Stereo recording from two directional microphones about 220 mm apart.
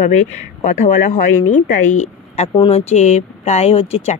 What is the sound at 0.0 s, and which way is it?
A woman's voice, 30° left (ahead or behind).